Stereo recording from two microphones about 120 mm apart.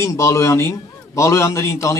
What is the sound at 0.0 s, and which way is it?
A man's voice, 25° left (ahead or behind).